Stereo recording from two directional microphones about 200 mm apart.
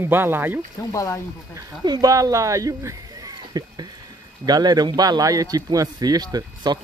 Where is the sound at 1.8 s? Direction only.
20° right (ahead or behind).